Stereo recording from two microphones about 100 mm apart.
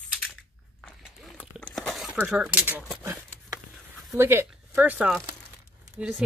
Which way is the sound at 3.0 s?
35° right (ahead or behind).